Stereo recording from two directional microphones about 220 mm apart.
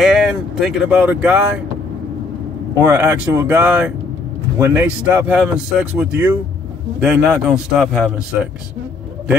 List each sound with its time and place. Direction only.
0.0 s speech: centre (ahead or behind)
2.8 s a man's voice: 10° right (ahead or behind)